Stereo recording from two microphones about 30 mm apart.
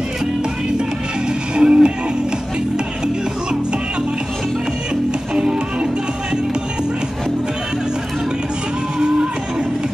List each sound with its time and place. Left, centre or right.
1.5 s music: right
5.3 s music: right